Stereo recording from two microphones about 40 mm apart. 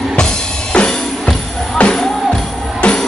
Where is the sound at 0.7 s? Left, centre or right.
Left.